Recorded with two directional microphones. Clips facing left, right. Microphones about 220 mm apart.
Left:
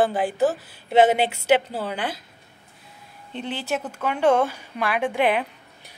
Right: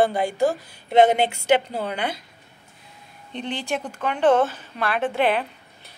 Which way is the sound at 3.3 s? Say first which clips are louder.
Even; 5° left (ahead or behind).